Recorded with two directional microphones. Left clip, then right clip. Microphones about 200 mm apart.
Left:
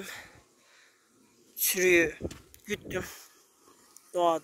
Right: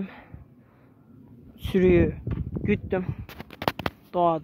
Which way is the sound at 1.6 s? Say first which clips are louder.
Right 3 dB; centre (ahead or behind).